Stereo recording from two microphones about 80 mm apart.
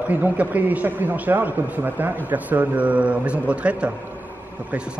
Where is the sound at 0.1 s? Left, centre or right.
Right.